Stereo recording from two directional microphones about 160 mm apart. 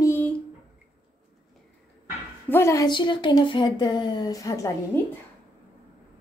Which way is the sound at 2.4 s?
15° left (ahead or behind).